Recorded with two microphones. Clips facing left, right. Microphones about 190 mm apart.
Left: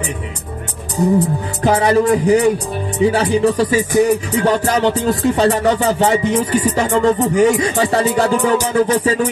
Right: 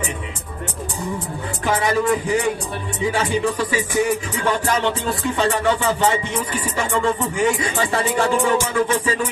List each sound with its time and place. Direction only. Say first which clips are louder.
1.6 s music: left 7 dB; 40° left (ahead or behind)